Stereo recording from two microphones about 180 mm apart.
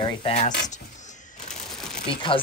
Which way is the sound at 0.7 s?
40° left (ahead or behind).